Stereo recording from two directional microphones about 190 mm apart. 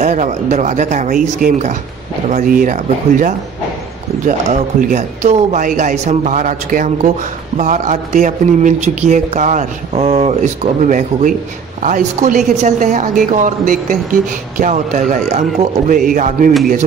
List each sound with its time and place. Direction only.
0.0 s speech: 40° right (ahead or behind)